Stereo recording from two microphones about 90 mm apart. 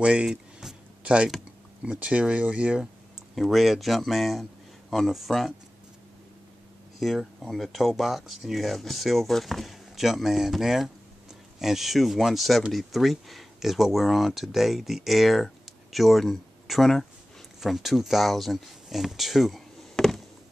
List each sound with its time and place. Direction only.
0.0 s a sound: 10° right (ahead or behind)
1.8 s speech: 15° right (ahead or behind)
7.0 s speech: centre (ahead or behind)